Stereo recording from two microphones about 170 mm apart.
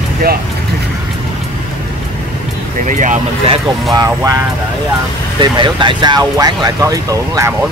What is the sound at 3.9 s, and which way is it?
Speech, 20° right (ahead or behind).